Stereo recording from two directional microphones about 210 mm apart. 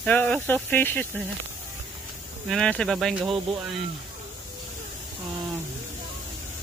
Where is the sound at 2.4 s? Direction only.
5° left (ahead or behind).